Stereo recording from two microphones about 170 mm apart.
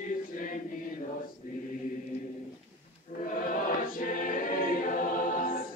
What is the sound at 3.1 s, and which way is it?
Music, 55° left (ahead or behind).